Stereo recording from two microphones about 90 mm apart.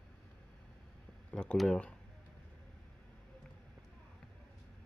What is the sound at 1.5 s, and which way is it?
Speech, 5° left (ahead or behind).